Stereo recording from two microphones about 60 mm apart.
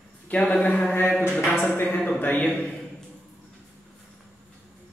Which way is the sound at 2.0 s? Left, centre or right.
Left.